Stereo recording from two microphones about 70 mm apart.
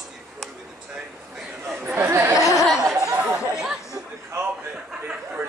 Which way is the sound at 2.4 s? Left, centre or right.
Left.